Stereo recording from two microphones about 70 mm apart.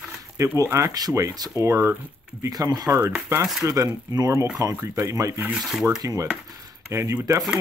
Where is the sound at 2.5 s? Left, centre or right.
Right.